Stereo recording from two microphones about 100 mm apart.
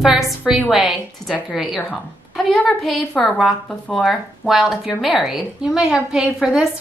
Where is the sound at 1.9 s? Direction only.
10° left (ahead or behind).